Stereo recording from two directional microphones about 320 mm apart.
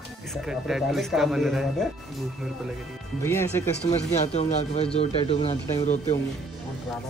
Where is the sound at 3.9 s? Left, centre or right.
Centre.